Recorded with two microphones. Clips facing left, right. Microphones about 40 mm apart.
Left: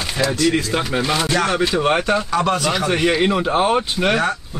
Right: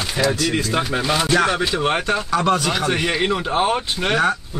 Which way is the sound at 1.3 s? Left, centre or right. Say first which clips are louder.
Even; centre.